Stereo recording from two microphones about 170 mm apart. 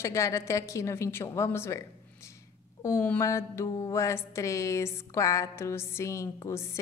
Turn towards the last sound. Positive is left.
turn(degrees=15)  # may be behind; listen again after turning